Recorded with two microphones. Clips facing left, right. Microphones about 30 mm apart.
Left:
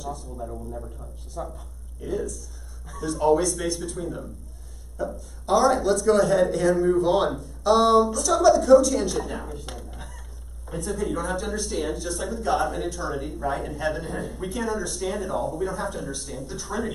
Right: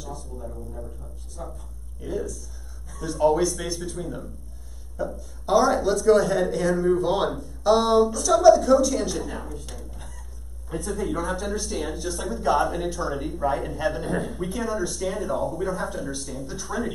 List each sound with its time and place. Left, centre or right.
0.0 s speech: centre
9.7 s speech: left
10.7 s speech: centre